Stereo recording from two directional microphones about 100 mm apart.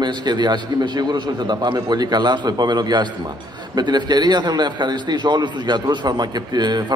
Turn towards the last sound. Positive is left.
turn(degrees=-45)  # may be behind; listen again after turning